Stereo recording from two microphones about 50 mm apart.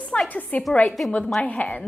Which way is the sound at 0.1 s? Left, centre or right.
Left.